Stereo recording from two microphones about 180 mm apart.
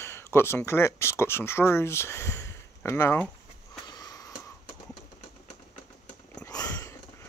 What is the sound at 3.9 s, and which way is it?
Wheeze, 20° left (ahead or behind).